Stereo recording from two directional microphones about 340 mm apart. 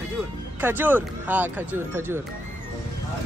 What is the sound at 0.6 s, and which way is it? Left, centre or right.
Speech, centre.